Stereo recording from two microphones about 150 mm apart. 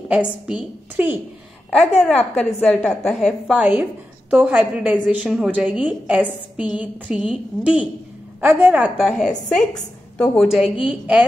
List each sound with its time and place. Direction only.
0.1 s a woman's voice: 5° right (ahead or behind)
1.8 s a woman's voice: 45° left (ahead or behind)
2.0 s a woman's voice: 5° left (ahead or behind)
3.5 s a woman's voice: 10° right (ahead or behind)
8.9 s a woman's voice: centre (ahead or behind)